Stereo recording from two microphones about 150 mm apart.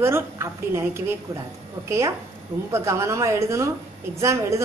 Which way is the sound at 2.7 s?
20° right (ahead or behind).